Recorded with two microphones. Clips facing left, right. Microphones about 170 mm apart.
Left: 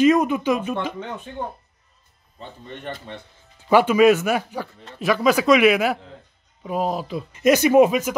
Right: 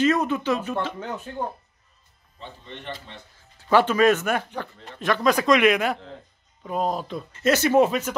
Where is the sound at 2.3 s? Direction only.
50° left (ahead or behind).